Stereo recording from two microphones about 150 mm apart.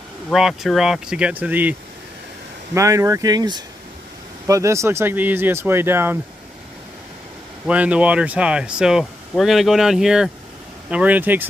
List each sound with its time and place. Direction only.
0.3 s speech: 5° right (ahead or behind)
7.6 s speech: 10° right (ahead or behind)